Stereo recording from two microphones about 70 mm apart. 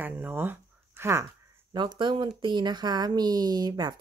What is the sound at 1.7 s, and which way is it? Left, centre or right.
Speech, right.